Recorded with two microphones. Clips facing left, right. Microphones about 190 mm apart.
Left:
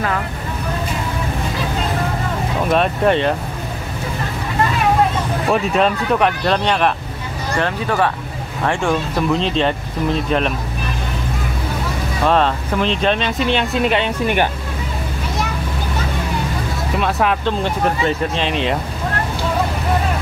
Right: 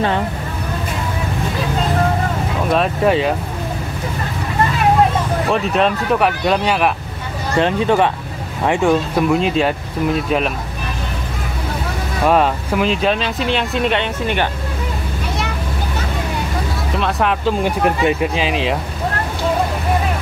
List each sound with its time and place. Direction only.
2.7 s speech: centre (ahead or behind)
5.5 s speech: centre (ahead or behind)
7.5 s speech: 20° right (ahead or behind); by 10.5 s 5° right (ahead or behind)
12.3 s speech: 10° right (ahead or behind); by 14.5 s 10° left (ahead or behind)
16.9 s speech: centre (ahead or behind)
17.6 s speech: 10° right (ahead or behind)